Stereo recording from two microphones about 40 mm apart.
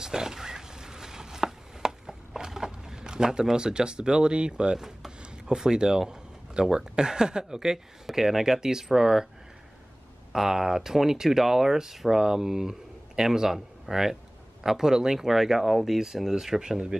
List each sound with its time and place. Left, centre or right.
0.0 s chopping: centre
3.5 s speech: right
10.3 s speech: centre